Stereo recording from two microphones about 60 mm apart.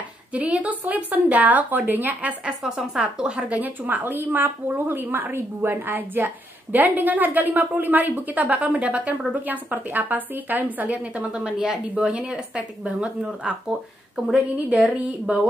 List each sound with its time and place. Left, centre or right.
0.3 s speech: right
2.4 s speech: centre